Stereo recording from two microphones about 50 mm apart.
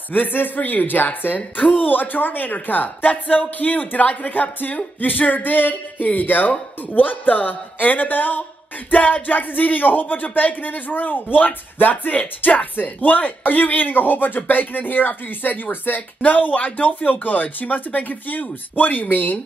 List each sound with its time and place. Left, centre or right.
0.1 s speech: left